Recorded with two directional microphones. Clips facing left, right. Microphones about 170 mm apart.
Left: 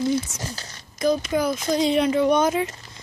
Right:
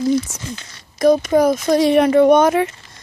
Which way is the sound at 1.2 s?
45° right (ahead or behind).